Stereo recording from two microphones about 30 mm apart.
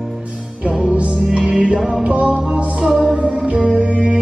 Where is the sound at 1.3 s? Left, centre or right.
Right.